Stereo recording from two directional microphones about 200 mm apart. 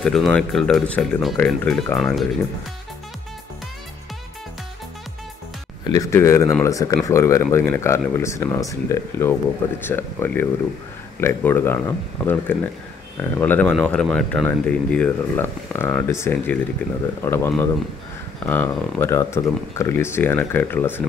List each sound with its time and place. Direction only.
0.0 s speech: 5° left (ahead or behind)
5.9 s speech: 15° left (ahead or behind)